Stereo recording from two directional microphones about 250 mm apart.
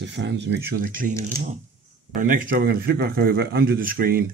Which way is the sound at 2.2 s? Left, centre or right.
Right.